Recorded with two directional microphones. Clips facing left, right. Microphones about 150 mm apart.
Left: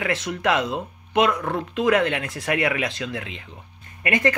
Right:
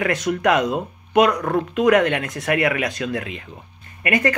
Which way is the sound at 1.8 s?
30° left (ahead or behind).